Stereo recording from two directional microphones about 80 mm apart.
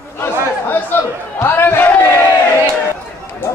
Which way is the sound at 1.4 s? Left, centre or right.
Left.